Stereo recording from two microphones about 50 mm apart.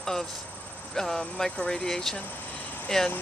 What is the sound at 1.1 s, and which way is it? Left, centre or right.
Speech, centre.